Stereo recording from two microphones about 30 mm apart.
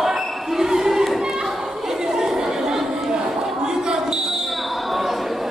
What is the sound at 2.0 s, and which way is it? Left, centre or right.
Chatter, centre.